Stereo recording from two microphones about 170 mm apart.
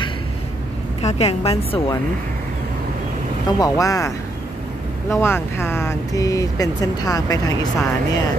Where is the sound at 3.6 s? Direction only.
20° left (ahead or behind).